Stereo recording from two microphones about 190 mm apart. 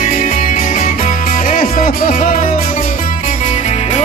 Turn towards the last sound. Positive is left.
turn(degrees=35)  # may be behind; listen again after turning